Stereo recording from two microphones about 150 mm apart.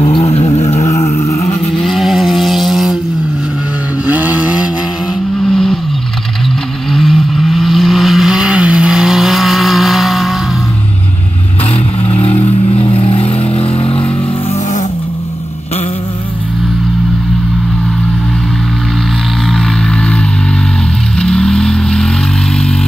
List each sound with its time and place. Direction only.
0.3 s vehicle: 45° left (ahead or behind)
0.8 s a sound: 20° left (ahead or behind)
1.2 s vehicle: 20° left (ahead or behind)
1.8 s vehicle: centre (ahead or behind)
4.1 s vehicle: 10° right (ahead or behind)
5.5 s vehicle: 5° left (ahead or behind)
6.9 s vehicle: centre (ahead or behind)
12.1 s vehicle: 45° left (ahead or behind)
19.5 s music: 5° left (ahead or behind)
21.2 s vehicle: 5° left (ahead or behind)